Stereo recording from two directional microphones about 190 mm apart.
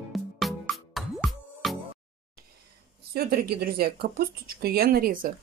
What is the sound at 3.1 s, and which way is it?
Speech, 55° right (ahead or behind).